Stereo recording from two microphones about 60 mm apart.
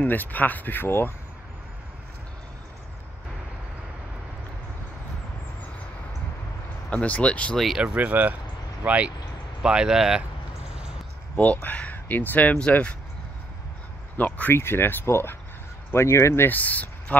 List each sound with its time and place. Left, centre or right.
0.0 s speech: left
6.9 s speech: left
7.5 s speech: centre
7.8 s speech: right
11.3 s speech: left
14.1 s speech: left
14.5 s speech: left
16.4 s speech: left